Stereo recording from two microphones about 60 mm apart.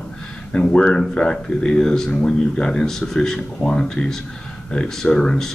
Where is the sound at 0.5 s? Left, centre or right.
Centre.